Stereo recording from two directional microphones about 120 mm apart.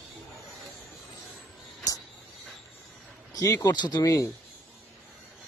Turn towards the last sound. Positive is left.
turn(degrees=30)  # may be behind; listen again after turning